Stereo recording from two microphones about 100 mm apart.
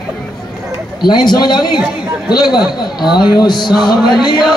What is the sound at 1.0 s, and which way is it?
A man's voice, 45° left (ahead or behind).